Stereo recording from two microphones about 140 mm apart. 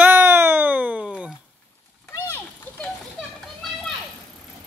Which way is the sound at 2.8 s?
5° left (ahead or behind).